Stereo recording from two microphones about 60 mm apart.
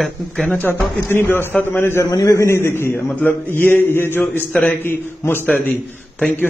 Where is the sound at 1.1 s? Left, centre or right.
Left.